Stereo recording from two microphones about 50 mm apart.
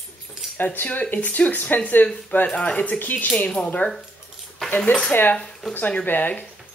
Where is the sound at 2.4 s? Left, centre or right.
Left.